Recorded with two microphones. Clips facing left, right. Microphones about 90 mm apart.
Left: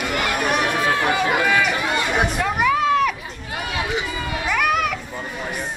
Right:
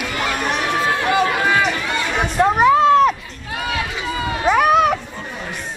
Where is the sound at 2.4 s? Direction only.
30° right (ahead or behind).